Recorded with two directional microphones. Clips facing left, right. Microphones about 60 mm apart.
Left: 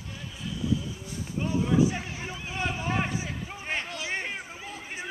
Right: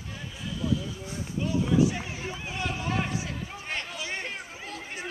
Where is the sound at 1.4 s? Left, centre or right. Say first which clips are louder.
Even; left.